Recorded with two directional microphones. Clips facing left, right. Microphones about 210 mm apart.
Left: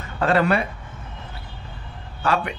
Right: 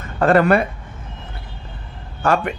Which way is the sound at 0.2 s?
50° right (ahead or behind).